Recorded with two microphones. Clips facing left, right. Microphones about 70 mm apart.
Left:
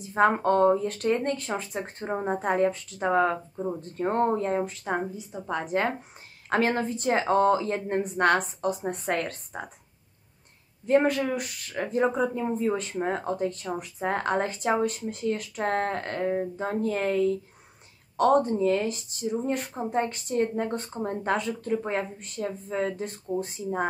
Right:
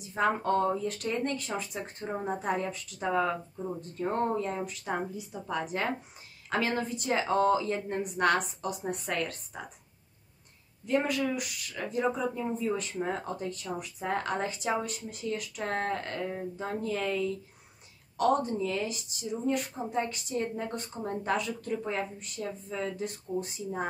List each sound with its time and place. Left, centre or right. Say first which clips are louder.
0.0 s speech: left 6 dB; left
10.9 s speech: left 6 dB; left